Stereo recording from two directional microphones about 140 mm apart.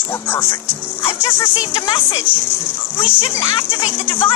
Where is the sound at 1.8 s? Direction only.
35° left (ahead or behind).